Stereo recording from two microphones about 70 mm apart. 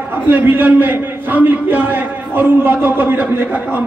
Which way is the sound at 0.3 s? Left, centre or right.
Right.